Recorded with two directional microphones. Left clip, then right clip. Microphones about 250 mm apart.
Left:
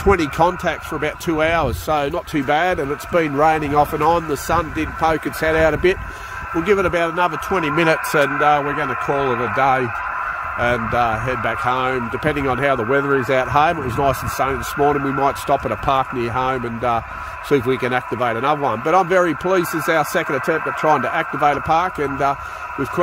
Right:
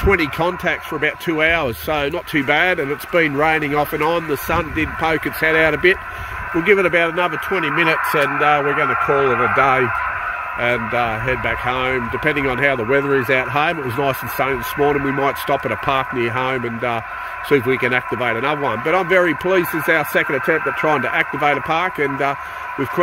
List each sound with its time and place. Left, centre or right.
0.1 s speech: centre
7.5 s speech: left; by 23.1 s centre